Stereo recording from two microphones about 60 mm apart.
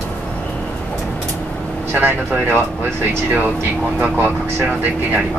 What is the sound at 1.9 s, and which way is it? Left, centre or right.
Speech, right.